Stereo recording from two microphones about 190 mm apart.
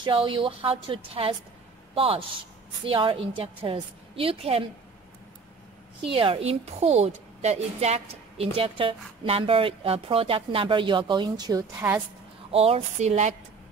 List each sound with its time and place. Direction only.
0.0 s a woman's voice: 25° right (ahead or behind)
6.1 s a woman's voice: 30° right (ahead or behind)
11.8 s a woman's voice: 10° right (ahead or behind)
12.4 s speech: 30° right (ahead or behind)